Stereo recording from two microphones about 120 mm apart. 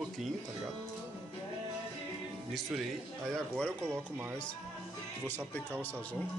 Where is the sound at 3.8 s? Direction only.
20° right (ahead or behind).